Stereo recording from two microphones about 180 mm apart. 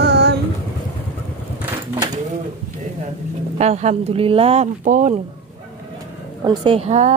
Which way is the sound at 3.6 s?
40° right (ahead or behind).